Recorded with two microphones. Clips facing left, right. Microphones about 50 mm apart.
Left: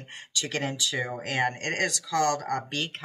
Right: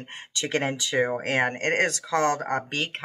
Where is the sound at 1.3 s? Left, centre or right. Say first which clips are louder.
Right 4 dB; right.